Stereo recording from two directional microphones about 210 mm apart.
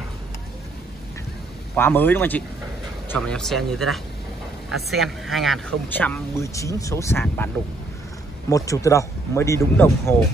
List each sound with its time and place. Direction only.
1.8 s speech: 10° left (ahead or behind)
8.5 s speech: 15° left (ahead or behind)